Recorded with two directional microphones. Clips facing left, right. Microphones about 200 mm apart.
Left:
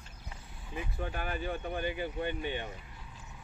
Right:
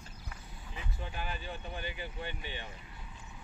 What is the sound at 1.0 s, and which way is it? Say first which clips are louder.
Speech: left 5 dB; 50° left (ahead or behind).